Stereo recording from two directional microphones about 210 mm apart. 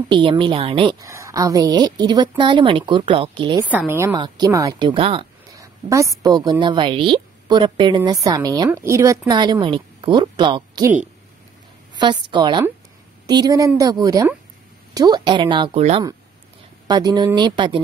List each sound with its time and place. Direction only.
0.1 s speech: 25° right (ahead or behind)
1.0 s speech: 15° right (ahead or behind)
3.7 s speech: 10° right (ahead or behind)
11.9 s speech: 20° right (ahead or behind)